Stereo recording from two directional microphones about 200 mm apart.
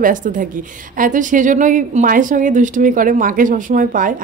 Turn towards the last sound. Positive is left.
turn(degrees=-40)  # may be behind; listen again after turning